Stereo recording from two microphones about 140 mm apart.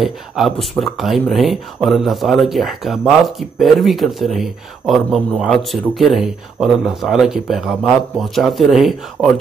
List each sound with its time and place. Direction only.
0.0 s speech: centre (ahead or behind)